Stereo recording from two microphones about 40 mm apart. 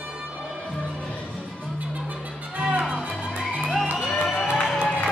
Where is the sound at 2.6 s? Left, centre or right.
Right.